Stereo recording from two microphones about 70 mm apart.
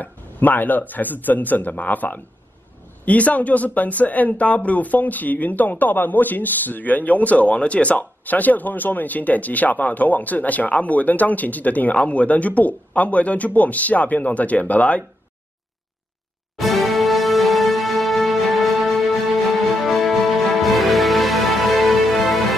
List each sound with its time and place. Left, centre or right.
0.0 s speech: left
16.5 s music: centre